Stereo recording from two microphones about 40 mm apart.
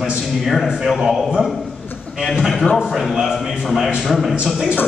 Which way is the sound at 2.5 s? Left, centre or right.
Left.